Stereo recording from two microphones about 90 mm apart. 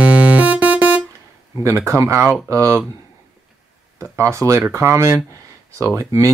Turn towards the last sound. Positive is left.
turn(degrees=-35)  # may be behind; listen again after turning